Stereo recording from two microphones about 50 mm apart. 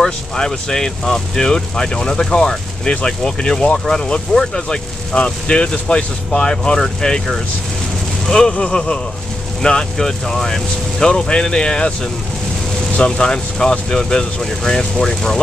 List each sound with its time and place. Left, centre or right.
0.0 s speech: centre
5.1 s speech: left
8.3 s speech: centre